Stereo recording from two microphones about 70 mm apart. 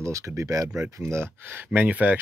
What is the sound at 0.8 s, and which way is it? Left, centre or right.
Speech, right.